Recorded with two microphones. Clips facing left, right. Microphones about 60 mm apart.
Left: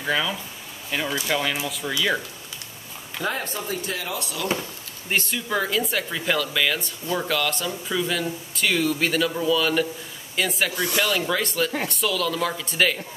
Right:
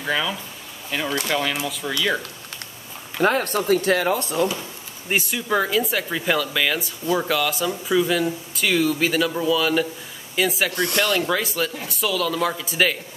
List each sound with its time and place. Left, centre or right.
0.0 s speech: centre
3.2 s speech: right
4.1 s speech: right
5.1 s speech: centre